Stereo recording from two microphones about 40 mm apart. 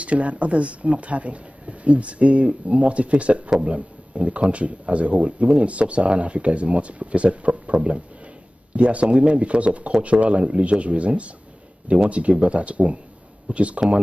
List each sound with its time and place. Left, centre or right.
0.0 s speech: right